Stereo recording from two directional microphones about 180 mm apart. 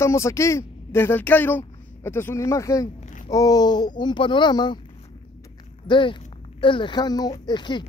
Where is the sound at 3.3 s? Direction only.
20° left (ahead or behind).